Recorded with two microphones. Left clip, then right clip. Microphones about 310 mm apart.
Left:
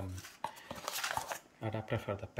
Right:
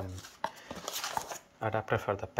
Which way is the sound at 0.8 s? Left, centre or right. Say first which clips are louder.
Right 1 dB; left.